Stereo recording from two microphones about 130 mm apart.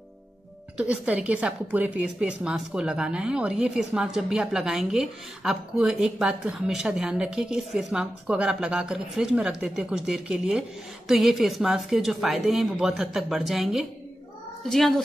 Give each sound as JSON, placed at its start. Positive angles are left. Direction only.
{"t": 0.7, "sound": "a woman's voice", "side_deg": -10}